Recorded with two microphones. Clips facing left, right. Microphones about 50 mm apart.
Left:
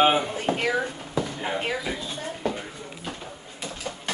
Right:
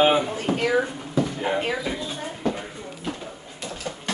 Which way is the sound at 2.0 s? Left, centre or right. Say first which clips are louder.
Right 2 dB; centre.